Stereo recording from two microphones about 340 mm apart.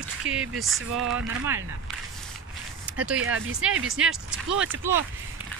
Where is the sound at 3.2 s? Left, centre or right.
Right.